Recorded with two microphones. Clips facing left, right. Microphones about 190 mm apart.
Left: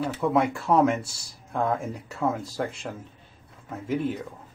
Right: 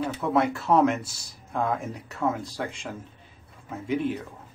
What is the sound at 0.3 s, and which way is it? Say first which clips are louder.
Speech: right 1 dB; 10° left (ahead or behind).